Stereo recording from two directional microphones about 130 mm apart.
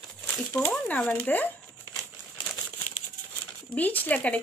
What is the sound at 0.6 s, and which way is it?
Speech, 10° left (ahead or behind).